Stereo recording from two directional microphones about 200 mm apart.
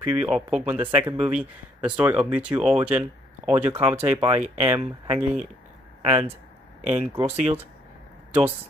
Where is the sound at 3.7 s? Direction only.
10° right (ahead or behind).